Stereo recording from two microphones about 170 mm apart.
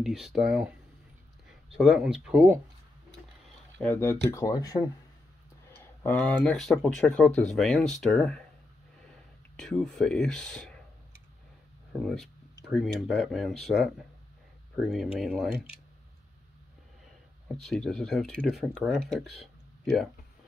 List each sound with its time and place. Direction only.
0.0 s speech: centre (ahead or behind)
3.7 s speech: 10° left (ahead or behind)
6.0 s speech: 5° left (ahead or behind)
11.9 s speech: centre (ahead or behind)
17.5 s speech: centre (ahead or behind)